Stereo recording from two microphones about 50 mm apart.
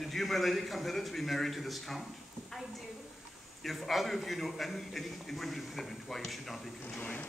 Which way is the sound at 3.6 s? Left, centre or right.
Centre.